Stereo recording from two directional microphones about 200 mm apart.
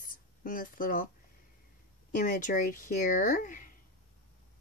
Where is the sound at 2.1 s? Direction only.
45° left (ahead or behind).